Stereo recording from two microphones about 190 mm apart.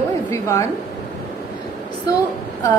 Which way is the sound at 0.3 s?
15° left (ahead or behind).